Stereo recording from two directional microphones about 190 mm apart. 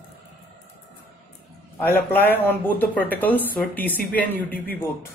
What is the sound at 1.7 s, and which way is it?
Speech, 10° left (ahead or behind).